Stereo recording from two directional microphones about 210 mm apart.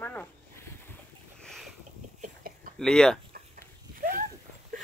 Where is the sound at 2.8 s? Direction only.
5° left (ahead or behind).